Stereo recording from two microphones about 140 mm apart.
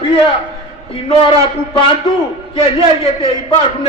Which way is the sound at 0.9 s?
40° left (ahead or behind).